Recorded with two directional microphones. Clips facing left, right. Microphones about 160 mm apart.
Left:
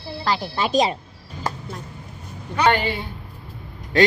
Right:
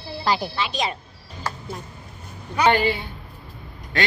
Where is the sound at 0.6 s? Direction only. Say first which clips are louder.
Left 7 dB; 45° left (ahead or behind).